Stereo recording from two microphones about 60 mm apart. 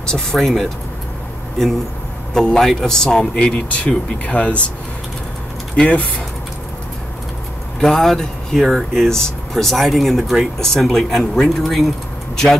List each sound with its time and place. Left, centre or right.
0.1 s speech: centre
2.3 s speech: centre
5.8 s speech: centre
7.8 s speech: centre